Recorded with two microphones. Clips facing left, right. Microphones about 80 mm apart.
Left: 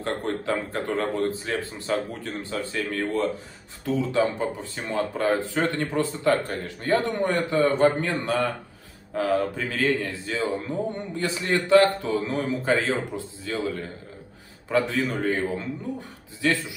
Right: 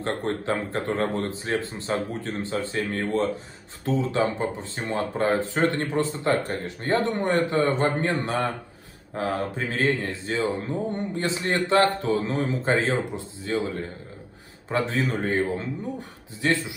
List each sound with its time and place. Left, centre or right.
0.0 s a man's voice: right